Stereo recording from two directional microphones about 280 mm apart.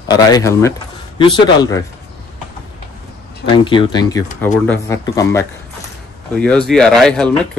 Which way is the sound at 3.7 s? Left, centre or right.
Centre.